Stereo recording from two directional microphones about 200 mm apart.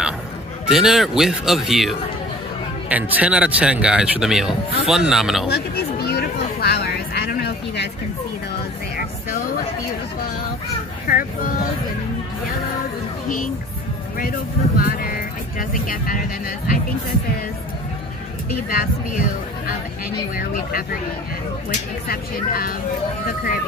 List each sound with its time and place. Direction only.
0.7 s speech: centre (ahead or behind)
5.5 s a sound: 50° left (ahead or behind)
11.1 s speech: 45° left (ahead or behind)
14.8 s music: 45° left (ahead or behind)
15.7 s speech: 45° left (ahead or behind)
18.5 s speech: 45° left (ahead or behind)
20.3 s speech: 45° left (ahead or behind)
22.0 s speech: 50° left (ahead or behind)